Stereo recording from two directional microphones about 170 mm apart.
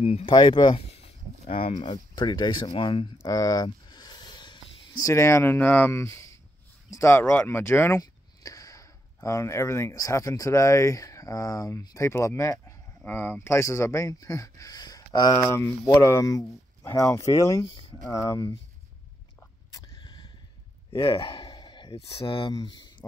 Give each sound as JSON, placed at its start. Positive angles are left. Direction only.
{"t": 0.0, "sound": "speech", "side_deg": 35}
{"t": 3.2, "sound": "a sound", "side_deg": 20}
{"t": 6.9, "sound": "speech", "side_deg": 15}
{"t": 19.4, "sound": "vehicle", "side_deg": 25}
{"t": 21.0, "sound": "speech", "side_deg": 30}